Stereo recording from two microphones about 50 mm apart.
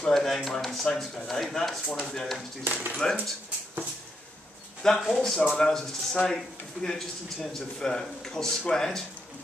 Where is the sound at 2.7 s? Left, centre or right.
Right.